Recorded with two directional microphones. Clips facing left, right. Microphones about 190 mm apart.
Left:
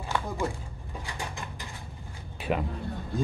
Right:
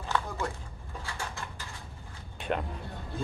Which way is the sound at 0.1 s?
15° left (ahead or behind).